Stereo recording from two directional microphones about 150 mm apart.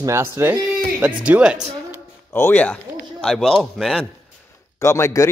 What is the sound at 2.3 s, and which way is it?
A man's voice, 15° left (ahead or behind).